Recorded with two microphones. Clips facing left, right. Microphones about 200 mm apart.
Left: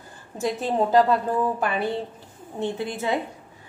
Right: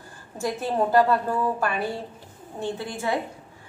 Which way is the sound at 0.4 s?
20° left (ahead or behind).